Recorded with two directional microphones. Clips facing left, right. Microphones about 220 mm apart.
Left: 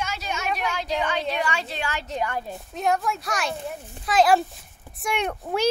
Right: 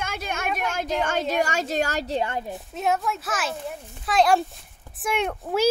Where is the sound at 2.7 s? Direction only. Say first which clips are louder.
Left 1 dB; centre (ahead or behind).